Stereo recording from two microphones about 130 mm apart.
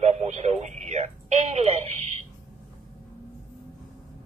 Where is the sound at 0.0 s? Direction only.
60° right (ahead or behind).